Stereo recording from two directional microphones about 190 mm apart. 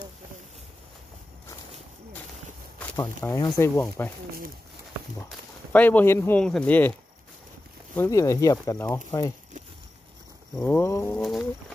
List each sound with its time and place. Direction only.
3.0 s speech: 20° left (ahead or behind)
5.7 s speech: 10° left (ahead or behind)
7.9 s speech: 15° left (ahead or behind)
10.5 s speech: 5° left (ahead or behind)